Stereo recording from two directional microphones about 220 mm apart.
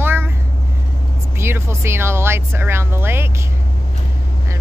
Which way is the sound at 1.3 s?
10° right (ahead or behind).